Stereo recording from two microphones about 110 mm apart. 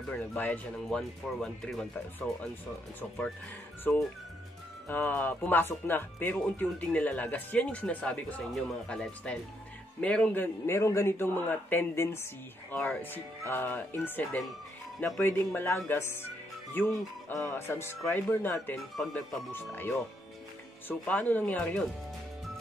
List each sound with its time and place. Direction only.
0.1 s speech: 15° left (ahead or behind)
3.9 s a man's voice: 15° left (ahead or behind)
12.7 s a man's voice: 15° left (ahead or behind)
18.9 s speech: 5° left (ahead or behind)
19.5 s speech: 20° left (ahead or behind)
21.0 s speech: 15° left (ahead or behind)